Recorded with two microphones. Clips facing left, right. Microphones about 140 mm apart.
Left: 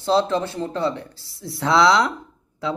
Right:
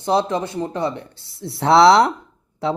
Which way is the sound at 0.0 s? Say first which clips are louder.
Even; 15° right (ahead or behind).